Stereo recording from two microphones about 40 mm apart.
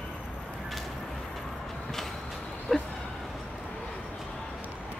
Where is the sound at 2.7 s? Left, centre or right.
Left.